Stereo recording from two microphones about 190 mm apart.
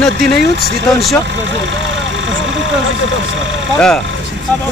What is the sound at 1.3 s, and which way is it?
Speech, 70° right (ahead or behind).